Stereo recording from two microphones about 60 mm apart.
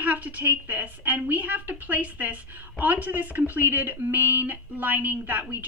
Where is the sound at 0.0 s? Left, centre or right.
Right.